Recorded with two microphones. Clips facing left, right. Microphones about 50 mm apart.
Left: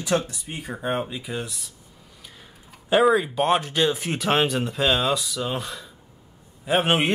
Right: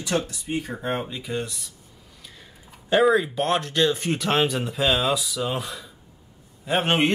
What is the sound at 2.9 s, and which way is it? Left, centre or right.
Speech, centre.